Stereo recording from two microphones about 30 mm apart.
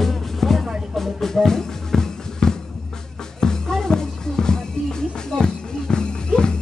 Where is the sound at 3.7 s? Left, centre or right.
Centre.